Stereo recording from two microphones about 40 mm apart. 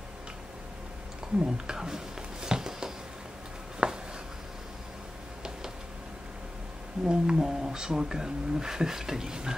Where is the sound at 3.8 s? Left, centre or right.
Right.